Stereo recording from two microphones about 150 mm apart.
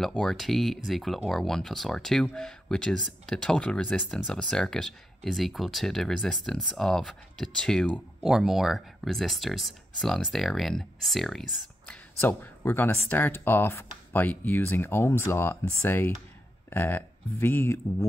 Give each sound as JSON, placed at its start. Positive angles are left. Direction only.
{"t": 0.0, "sound": "speech", "side_deg": 5}
{"t": 12.2, "sound": "speech", "side_deg": 15}